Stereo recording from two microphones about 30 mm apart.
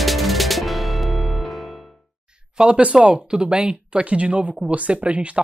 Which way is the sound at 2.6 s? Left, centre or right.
Right.